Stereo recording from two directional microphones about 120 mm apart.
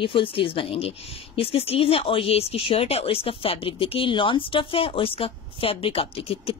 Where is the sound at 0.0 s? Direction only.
45° left (ahead or behind).